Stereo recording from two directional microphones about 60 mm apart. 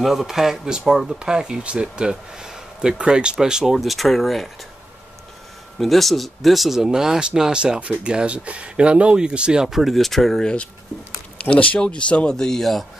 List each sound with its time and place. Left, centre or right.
0.0 s speech: centre
5.8 s speech: centre